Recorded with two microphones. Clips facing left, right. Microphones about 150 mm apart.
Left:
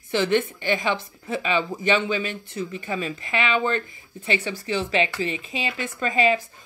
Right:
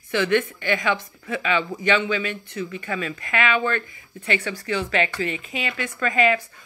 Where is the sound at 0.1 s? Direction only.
30° left (ahead or behind).